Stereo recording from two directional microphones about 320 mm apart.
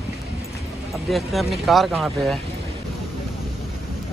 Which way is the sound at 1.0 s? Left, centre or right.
Centre.